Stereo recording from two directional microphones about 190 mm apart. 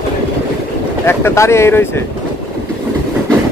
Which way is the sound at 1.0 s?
15° left (ahead or behind).